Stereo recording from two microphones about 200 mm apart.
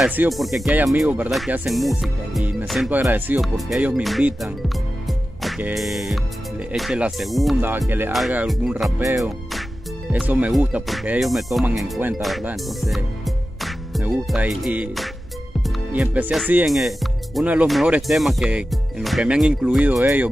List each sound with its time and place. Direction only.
0.0 s speech: 5° right (ahead or behind)
9.0 s music: 15° right (ahead or behind)
10.1 s speech: 5° right (ahead or behind)